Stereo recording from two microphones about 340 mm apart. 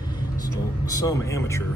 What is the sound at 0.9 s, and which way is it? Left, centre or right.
Speech, centre.